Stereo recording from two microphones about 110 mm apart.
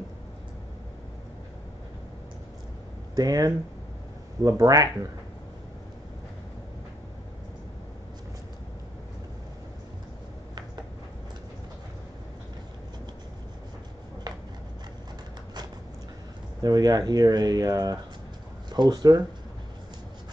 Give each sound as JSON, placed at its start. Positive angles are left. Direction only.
{"t": 3.2, "sound": "speech", "side_deg": -35}
{"t": 14.3, "sound": "a sound", "side_deg": -40}
{"t": 16.6, "sound": "speech", "side_deg": -35}